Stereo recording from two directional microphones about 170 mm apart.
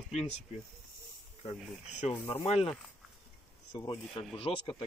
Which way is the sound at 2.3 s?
35° left (ahead or behind).